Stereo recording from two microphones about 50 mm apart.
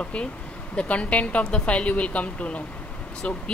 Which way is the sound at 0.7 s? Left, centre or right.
Left.